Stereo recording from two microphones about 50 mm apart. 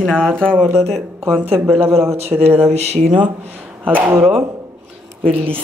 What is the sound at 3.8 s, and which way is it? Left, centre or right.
Speech, right.